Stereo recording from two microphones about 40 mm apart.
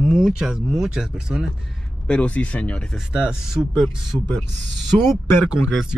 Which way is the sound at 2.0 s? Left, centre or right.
Left.